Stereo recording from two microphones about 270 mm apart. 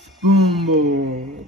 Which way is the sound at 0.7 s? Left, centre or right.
Right.